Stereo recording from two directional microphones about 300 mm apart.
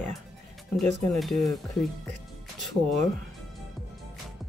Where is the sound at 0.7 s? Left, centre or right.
Centre.